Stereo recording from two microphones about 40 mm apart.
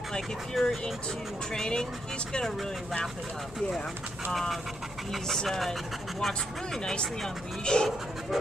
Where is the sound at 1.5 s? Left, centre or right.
Centre.